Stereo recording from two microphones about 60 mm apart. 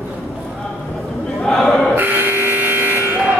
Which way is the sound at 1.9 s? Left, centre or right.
Right.